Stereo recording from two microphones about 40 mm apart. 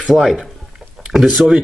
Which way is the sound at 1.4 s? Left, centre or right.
Centre.